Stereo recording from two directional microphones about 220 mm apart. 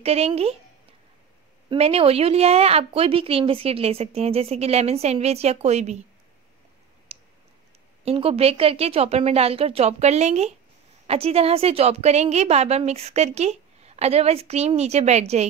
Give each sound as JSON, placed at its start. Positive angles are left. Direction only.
{"t": 0.0, "sound": "a woman's voice", "side_deg": -30}
{"t": 1.7, "sound": "a woman's voice", "side_deg": -25}
{"t": 8.0, "sound": "a woman's voice", "side_deg": -25}